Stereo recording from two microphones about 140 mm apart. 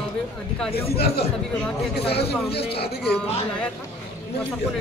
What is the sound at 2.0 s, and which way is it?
Speech, 45° left (ahead or behind).